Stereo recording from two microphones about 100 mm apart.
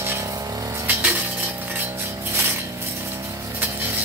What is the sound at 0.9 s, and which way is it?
Chink, 15° right (ahead or behind).